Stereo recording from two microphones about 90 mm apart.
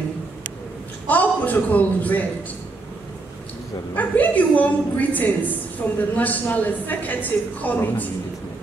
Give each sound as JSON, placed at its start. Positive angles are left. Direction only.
{"t": 1.0, "sound": "a man's voice", "side_deg": 20}
{"t": 3.9, "sound": "a woman's voice", "side_deg": 20}